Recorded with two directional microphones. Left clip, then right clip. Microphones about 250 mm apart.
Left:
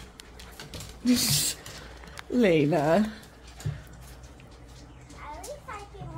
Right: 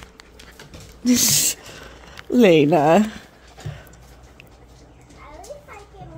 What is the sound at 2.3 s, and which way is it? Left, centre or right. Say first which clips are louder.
Speech: right 9 dB; right.